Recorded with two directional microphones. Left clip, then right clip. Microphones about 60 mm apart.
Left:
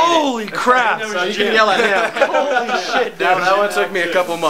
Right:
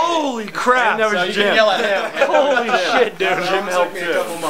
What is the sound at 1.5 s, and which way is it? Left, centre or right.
Speech, left.